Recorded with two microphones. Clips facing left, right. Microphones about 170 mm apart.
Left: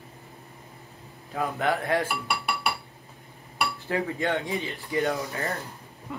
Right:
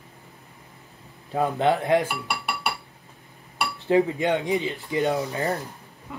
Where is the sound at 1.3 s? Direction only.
25° right (ahead or behind).